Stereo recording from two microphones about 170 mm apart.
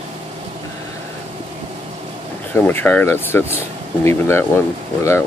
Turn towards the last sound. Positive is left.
turn(degrees=15)  # may be behind; listen again after turning